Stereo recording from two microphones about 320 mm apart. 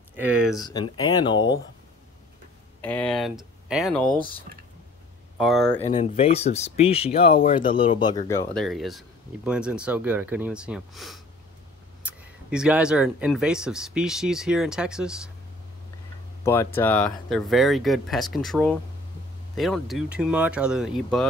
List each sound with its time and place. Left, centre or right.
0.1 s speech: centre
0.6 s speech: centre
2.8 s speech: centre
5.4 s speech: centre
5.8 s speech: centre
16.4 s speech: centre